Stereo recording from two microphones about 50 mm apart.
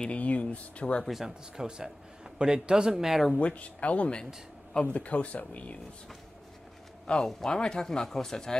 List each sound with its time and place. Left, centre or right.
0.0 s speech: left
1.0 s speech: centre
2.3 s speech: centre
3.3 s speech: left
7.2 s speech: centre
7.5 s speech: centre